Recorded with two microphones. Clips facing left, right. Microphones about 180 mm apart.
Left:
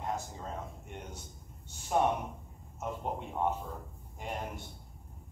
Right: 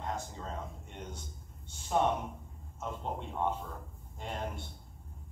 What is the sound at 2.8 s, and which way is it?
A man's voice, 10° left (ahead or behind).